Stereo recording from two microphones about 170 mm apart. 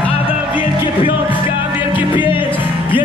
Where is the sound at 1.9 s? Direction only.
30° left (ahead or behind).